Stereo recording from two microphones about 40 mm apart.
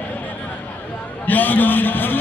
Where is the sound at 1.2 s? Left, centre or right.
Left.